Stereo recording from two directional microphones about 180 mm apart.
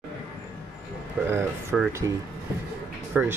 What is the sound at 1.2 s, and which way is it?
Speech, 5° right (ahead or behind).